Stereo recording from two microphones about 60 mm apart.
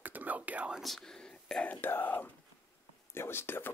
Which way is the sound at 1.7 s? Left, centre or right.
Left.